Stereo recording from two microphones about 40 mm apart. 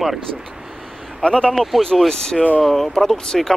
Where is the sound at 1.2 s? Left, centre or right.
Left.